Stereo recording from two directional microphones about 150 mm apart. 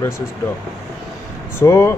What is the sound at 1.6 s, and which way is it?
Speech, 20° left (ahead or behind).